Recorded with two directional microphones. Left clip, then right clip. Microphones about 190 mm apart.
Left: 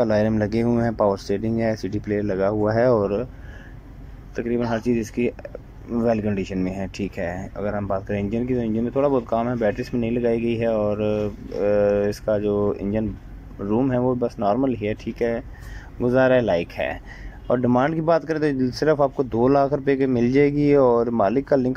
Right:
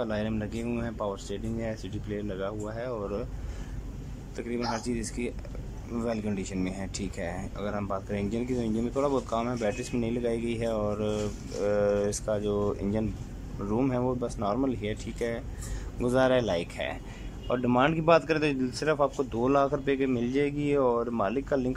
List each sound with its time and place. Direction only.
0.0 s speech: centre (ahead or behind)
2.6 s speech: 30° left (ahead or behind)
3.0 s speech: 10° left (ahead or behind)
4.4 s speech: 10° left (ahead or behind)
21.3 s speech: 5° left (ahead or behind)